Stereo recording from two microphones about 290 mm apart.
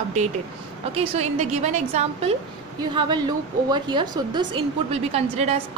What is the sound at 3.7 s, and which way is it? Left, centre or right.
A woman's voice, centre.